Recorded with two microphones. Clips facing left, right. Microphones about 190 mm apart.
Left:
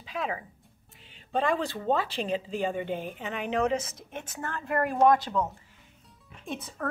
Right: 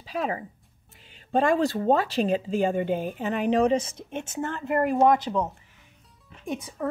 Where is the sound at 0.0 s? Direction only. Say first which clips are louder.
Right 4 dB; 40° right (ahead or behind).